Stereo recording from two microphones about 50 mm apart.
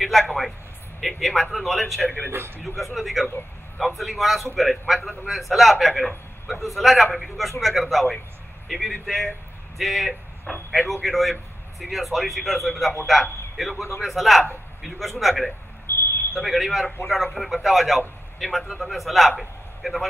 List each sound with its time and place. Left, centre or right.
0.0 s a man's voice: centre
2.0 s a man's voice: left
2.3 s a man's voice: right
2.6 s a man's voice: centre
15.9 s a sound: left
16.3 s a man's voice: centre